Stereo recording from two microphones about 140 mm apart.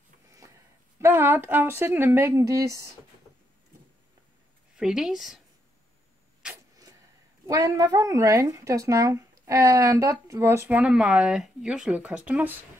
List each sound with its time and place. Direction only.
0.9 s speech: 15° right (ahead or behind)
4.7 s a woman's voice: 5° right (ahead or behind)
7.4 s speech: 25° right (ahead or behind)